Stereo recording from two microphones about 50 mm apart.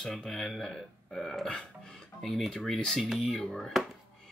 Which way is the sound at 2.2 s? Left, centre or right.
Centre.